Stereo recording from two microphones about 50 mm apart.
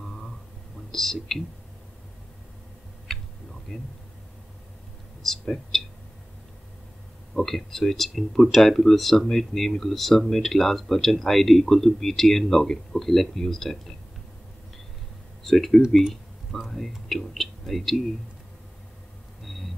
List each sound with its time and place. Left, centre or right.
0.0 s a sound: centre
0.9 s speech: centre
3.7 s speech: centre
5.2 s speech: centre
7.3 s speech: centre
15.4 s speech: centre
19.4 s a sound: centre